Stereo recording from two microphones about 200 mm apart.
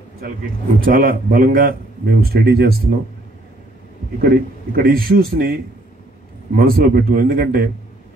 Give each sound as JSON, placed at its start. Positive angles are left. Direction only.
{"t": 0.7, "sound": "a man's voice", "side_deg": -45}
{"t": 4.7, "sound": "a man's voice", "side_deg": -45}